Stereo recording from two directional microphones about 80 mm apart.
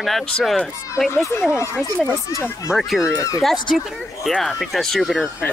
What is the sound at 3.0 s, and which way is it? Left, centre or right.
Speech, left.